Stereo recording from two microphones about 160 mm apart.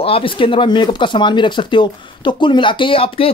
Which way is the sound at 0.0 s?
35° left (ahead or behind).